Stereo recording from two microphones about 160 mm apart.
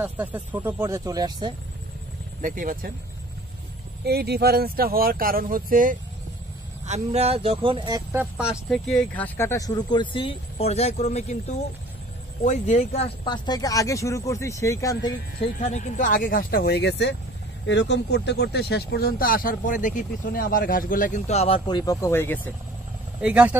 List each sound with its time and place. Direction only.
0.0 s speech: 10° right (ahead or behind)
2.4 s speech: 55° right (ahead or behind)
4.0 s speech: 85° right; by 5.9 s 60° right (ahead or behind)
6.9 s speech: 40° right (ahead or behind)
8.1 s speech: 10° right (ahead or behind); by 13.1 s 40° left (ahead or behind)
13.2 s speech: 25° left (ahead or behind)
15.6 s speech: 50° left (ahead or behind); by 22.5 s 15° left (ahead or behind)
23.2 s speech: 10° right (ahead or behind)